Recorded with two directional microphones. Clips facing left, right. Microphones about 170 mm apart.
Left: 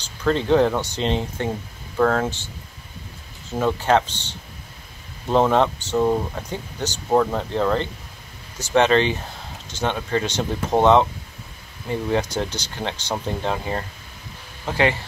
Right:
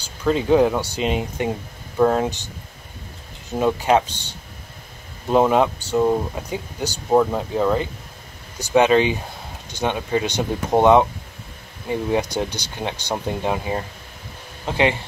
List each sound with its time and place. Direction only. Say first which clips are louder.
0.0 s speech: right 1 dB; 10° right (ahead or behind)